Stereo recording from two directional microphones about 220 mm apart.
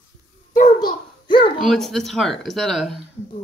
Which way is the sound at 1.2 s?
20° left (ahead or behind).